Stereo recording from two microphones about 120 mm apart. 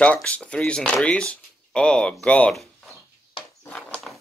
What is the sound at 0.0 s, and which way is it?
Speech, 10° left (ahead or behind).